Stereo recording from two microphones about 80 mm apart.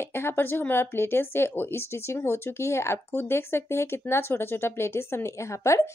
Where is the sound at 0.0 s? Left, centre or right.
Left.